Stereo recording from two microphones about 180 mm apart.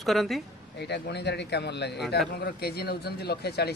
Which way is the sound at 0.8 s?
65° left (ahead or behind).